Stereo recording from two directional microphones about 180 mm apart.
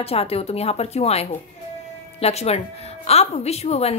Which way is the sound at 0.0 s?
35° left (ahead or behind).